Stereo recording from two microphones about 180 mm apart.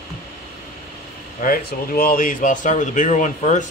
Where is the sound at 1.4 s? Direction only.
50° left (ahead or behind).